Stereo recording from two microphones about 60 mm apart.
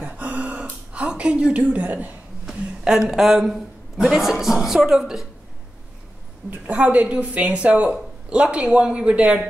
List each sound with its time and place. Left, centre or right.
0.0 s gasp: right
2.4 s a sound: centre
3.1 s a woman's voice: centre
6.6 s a man's voice: right